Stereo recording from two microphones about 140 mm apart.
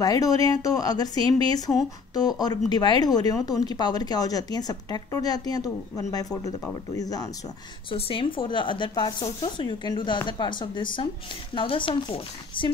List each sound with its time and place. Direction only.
0.0 s speech: 25° left (ahead or behind)
2.7 s speech: 30° left (ahead or behind)
7.9 s speech: 40° left (ahead or behind)